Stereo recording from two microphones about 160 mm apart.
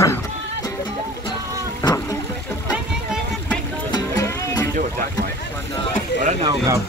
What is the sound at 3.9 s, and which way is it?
Music, 20° left (ahead or behind).